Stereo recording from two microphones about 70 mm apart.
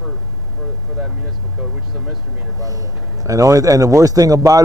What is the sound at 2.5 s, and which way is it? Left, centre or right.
A man's voice, right.